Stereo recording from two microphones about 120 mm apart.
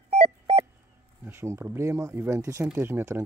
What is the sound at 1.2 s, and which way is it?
Speech, 15° right (ahead or behind).